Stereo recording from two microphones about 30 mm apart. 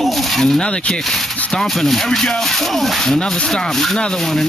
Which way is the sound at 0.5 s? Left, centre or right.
Left.